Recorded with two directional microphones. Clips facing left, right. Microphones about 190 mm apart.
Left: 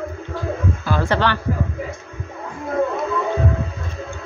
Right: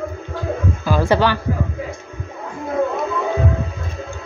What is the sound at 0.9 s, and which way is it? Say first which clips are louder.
Speech: right 4 dB; 10° right (ahead or behind).